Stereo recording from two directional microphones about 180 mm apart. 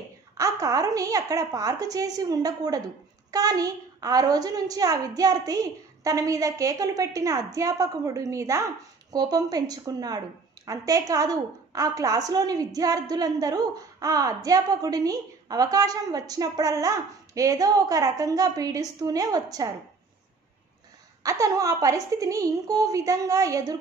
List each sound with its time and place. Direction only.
0.4 s a woman's voice: 20° right (ahead or behind)
21.2 s a woman's voice: 20° right (ahead or behind)